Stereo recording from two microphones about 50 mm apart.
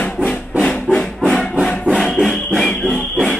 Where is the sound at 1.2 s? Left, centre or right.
Centre.